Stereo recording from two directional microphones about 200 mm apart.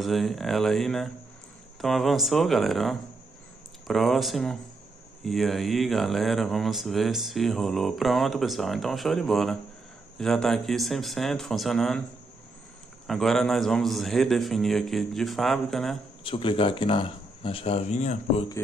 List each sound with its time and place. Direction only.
0.0 s speech: centre (ahead or behind)
13.0 s speech: centre (ahead or behind)
16.3 s speech: 25° left (ahead or behind)